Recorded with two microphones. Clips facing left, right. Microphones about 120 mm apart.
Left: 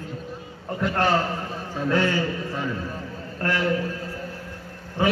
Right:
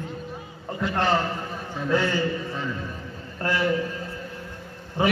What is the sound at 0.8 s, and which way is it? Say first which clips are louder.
Speech: left 1 dB; 5° left (ahead or behind).